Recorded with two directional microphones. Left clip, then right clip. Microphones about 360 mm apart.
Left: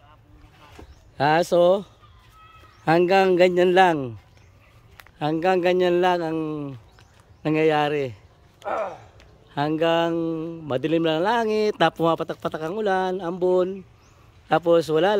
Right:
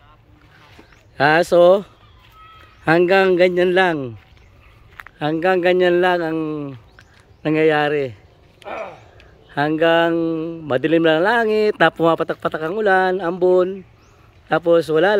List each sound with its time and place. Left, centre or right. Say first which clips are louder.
1.1 s a man's voice: right 5 dB; centre
8.6 s a sound: left 2 dB; centre
9.5 s a man's voice: right 6 dB; centre